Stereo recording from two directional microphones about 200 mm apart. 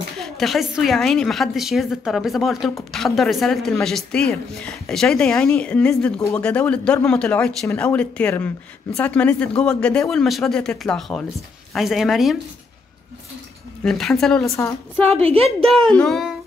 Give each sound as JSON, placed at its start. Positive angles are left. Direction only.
{"t": 0.2, "sound": "a woman's voice", "side_deg": 0}
{"t": 13.8, "sound": "a woman's voice", "side_deg": 0}
{"t": 15.2, "sound": "a woman's voice", "side_deg": -30}
{"t": 15.7, "sound": "a woman's voice", "side_deg": 5}